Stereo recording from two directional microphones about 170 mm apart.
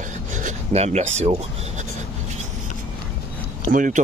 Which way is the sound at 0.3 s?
45° right (ahead or behind).